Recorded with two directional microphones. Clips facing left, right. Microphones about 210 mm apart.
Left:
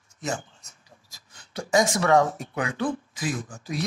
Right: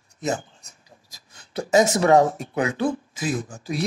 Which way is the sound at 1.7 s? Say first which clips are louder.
Right 4 dB; 25° right (ahead or behind).